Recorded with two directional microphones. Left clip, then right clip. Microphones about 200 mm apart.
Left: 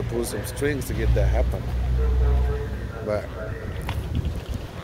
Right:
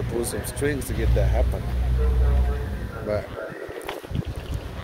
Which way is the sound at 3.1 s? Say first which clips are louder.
Even; 10° left (ahead or behind).